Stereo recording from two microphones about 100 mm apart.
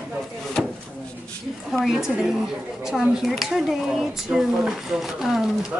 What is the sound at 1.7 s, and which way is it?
Speech, 5° right (ahead or behind).